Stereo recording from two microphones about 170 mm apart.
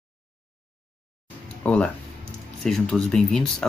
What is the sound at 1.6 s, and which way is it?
Speech, 5° left (ahead or behind).